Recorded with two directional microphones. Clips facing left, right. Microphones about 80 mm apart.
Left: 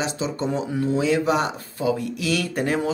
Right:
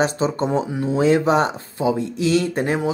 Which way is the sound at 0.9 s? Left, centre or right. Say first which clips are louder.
Right 5 dB; right.